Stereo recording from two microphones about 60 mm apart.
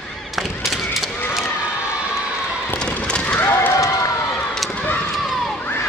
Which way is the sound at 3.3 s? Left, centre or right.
Left.